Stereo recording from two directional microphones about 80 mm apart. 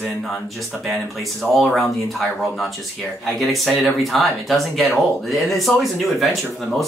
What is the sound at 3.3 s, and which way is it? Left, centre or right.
Speech, centre.